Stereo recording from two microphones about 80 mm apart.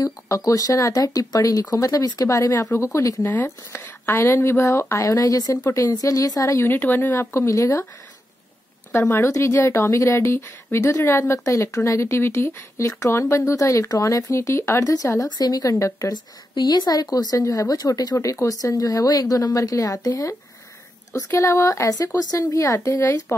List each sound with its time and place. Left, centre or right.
0.0 s a woman's voice: left
6.7 s a woman's voice: left
9.1 s a woman's voice: left
16.1 s a woman's voice: left